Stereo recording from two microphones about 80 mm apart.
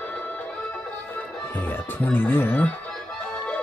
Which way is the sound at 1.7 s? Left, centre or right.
Left.